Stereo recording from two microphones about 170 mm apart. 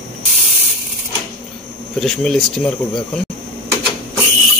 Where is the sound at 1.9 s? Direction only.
5° left (ahead or behind).